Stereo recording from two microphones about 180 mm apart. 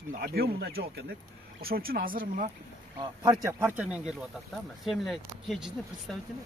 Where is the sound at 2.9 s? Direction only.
25° right (ahead or behind).